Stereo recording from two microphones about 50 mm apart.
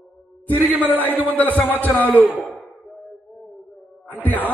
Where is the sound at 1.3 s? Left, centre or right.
Left.